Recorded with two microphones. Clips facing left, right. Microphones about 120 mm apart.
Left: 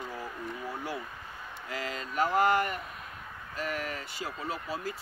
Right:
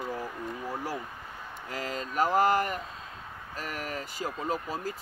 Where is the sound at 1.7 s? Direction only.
40° right (ahead or behind).